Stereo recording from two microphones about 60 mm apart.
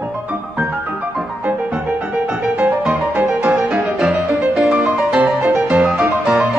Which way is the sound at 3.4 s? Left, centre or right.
Centre.